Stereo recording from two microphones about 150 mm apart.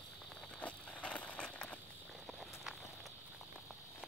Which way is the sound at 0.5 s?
10° left (ahead or behind).